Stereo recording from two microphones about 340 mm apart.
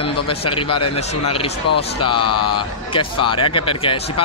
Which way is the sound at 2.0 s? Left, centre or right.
Centre.